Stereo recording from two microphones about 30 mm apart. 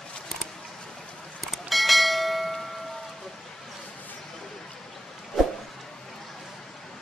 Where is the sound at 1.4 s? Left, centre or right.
Centre.